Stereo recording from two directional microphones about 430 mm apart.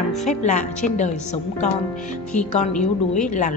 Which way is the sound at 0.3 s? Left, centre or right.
Centre.